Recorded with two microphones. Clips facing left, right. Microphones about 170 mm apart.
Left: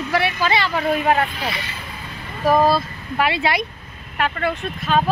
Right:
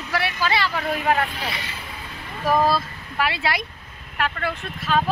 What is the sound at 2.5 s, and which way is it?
Speech, 15° left (ahead or behind).